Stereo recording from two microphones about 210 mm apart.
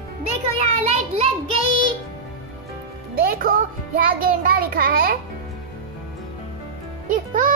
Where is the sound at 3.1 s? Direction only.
45° right (ahead or behind).